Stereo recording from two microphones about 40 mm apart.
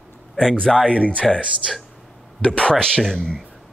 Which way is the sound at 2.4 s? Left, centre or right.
Left.